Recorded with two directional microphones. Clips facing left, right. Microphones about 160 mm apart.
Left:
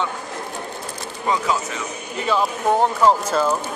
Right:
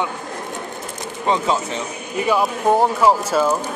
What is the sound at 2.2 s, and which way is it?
Speech, 15° right (ahead or behind).